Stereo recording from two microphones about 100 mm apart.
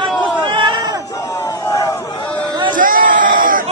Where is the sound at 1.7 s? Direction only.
30° left (ahead or behind).